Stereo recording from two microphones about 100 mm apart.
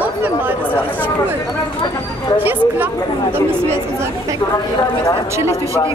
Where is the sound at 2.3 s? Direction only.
20° right (ahead or behind).